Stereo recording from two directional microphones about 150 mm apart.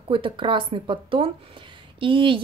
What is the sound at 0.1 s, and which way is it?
Speech, 35° right (ahead or behind).